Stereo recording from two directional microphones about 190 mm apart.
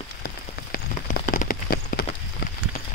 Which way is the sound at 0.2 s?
45° left (ahead or behind).